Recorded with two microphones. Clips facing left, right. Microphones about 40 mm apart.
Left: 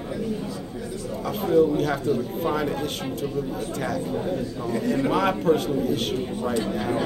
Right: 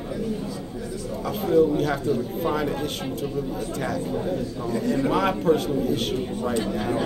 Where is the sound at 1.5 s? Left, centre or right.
Centre.